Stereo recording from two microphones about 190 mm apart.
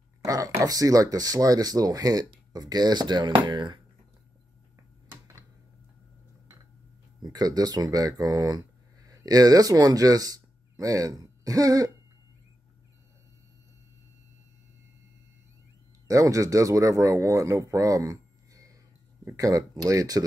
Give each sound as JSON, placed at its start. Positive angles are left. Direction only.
{"t": 0.2, "sound": "speech", "side_deg": -15}
{"t": 7.2, "sound": "speech", "side_deg": -20}
{"t": 16.1, "sound": "speech", "side_deg": -15}